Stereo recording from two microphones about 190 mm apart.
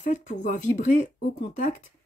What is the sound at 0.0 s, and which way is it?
Speech, 40° left (ahead or behind).